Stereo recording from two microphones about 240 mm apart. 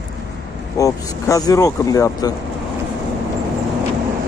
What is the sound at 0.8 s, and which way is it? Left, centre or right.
Speech, centre.